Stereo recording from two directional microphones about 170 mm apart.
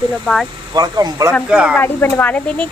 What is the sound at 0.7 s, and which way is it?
Speech, 20° right (ahead or behind).